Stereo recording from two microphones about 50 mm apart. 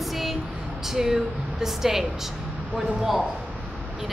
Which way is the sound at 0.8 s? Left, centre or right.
Centre.